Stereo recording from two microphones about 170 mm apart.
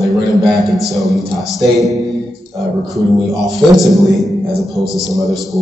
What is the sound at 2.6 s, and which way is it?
A man's voice, centre (ahead or behind).